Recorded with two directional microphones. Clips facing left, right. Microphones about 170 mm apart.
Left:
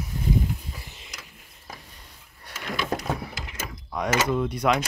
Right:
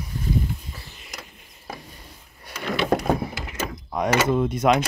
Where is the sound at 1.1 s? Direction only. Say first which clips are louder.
Right 5 dB; 55° right (ahead or behind).